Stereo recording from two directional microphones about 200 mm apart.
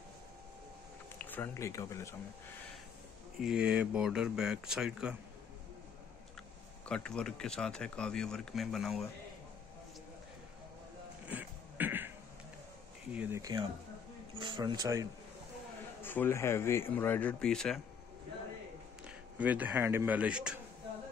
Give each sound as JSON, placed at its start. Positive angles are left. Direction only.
{"t": 1.1, "sound": "speech", "side_deg": 10}
{"t": 3.3, "sound": "speech", "side_deg": -5}
{"t": 6.9, "sound": "speech", "side_deg": 5}
{"t": 11.2, "sound": "a sound", "side_deg": -10}
{"t": 13.1, "sound": "speech", "side_deg": -10}
{"t": 16.0, "sound": "speech", "side_deg": 10}
{"t": 19.0, "sound": "a man's voice", "side_deg": -10}